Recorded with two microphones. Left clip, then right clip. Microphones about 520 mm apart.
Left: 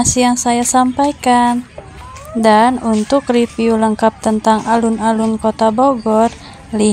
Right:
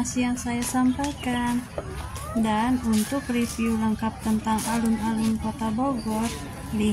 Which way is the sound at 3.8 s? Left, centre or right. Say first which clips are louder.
Left 15 dB; right.